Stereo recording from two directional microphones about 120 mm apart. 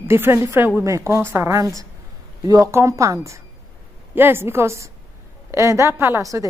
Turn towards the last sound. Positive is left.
turn(degrees=-25)  # may be behind; listen again after turning